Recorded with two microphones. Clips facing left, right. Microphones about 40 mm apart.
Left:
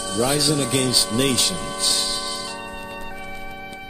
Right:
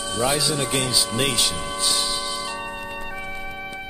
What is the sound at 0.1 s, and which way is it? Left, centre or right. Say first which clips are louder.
Speech: left 1 dB; centre.